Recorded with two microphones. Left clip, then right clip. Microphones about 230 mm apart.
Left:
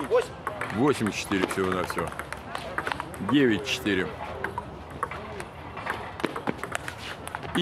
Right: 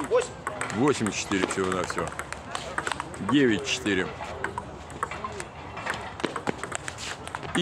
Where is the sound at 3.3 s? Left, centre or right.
Centre.